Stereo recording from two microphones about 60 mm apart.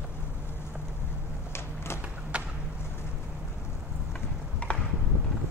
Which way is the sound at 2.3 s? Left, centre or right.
Centre.